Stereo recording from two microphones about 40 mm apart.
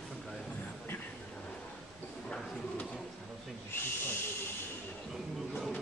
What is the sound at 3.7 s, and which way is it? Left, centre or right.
Hiss, left.